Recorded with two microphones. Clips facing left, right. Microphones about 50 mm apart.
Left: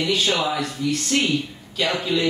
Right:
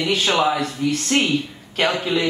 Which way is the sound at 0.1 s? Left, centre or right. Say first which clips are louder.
Right 5 dB; right.